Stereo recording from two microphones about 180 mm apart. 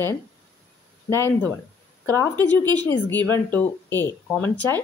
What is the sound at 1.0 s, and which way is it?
Speech, 15° left (ahead or behind).